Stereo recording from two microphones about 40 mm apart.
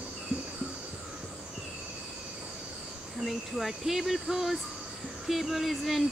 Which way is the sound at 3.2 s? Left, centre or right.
Centre.